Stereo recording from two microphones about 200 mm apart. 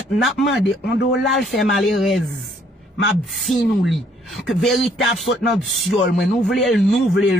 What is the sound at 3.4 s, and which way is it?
Speech, centre (ahead or behind).